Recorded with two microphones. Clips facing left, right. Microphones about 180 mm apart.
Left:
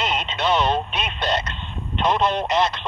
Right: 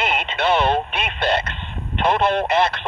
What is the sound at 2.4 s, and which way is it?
Speech, 55° right (ahead or behind).